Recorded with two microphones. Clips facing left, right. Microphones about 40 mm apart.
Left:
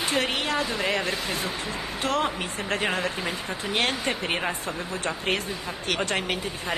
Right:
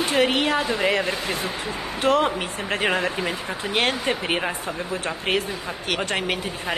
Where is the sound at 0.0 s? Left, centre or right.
Centre.